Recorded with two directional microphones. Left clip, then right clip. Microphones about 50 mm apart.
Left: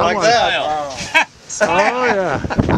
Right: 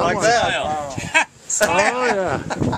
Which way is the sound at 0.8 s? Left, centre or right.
Centre.